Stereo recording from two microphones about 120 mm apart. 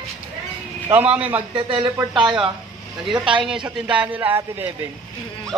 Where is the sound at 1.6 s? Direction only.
45° right (ahead or behind).